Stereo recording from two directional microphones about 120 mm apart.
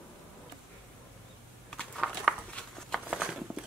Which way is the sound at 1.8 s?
5° left (ahead or behind).